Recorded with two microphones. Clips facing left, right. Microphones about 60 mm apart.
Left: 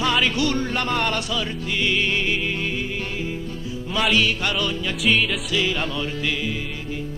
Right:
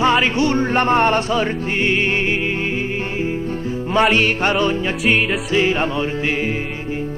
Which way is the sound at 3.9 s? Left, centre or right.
Right.